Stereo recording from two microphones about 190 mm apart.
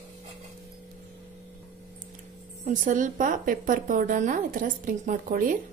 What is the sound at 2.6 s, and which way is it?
A woman's voice, 40° right (ahead or behind).